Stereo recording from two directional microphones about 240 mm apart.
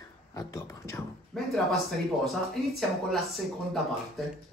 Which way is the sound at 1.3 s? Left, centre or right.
Centre.